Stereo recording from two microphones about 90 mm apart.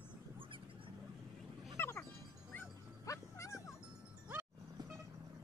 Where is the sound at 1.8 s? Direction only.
25° left (ahead or behind).